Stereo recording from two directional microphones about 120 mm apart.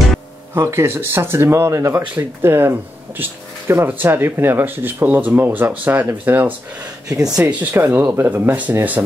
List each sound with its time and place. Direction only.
0.6 s speech: 25° right (ahead or behind)